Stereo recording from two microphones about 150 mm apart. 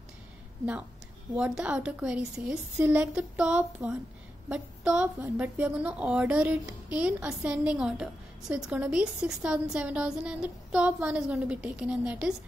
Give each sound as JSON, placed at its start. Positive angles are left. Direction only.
{"t": 1.3, "sound": "a woman's voice", "side_deg": -10}